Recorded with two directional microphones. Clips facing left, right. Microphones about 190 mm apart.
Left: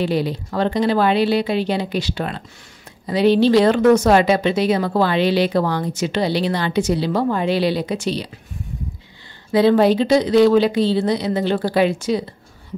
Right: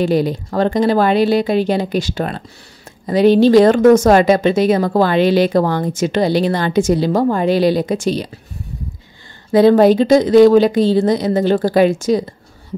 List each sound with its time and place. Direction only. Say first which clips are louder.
0.0 s speech: right 5 dB; 45° right (ahead or behind)
9.5 s speech: right 4 dB; 45° right (ahead or behind)